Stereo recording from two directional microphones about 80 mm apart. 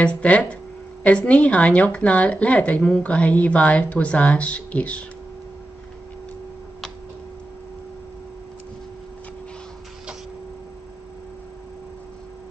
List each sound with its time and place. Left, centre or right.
0.0 s speech: centre